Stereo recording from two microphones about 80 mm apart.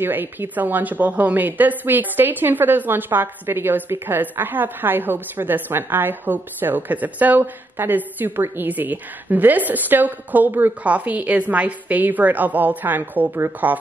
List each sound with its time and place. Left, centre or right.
0.0 s a woman's voice: right